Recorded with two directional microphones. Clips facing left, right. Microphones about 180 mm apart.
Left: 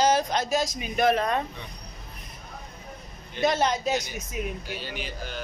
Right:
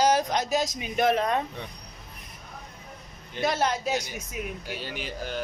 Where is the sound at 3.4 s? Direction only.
5° right (ahead or behind).